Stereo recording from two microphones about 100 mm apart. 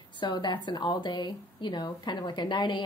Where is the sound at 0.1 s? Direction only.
50° left (ahead or behind).